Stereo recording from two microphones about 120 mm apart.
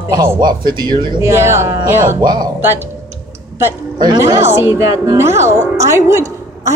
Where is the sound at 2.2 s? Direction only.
35° right (ahead or behind).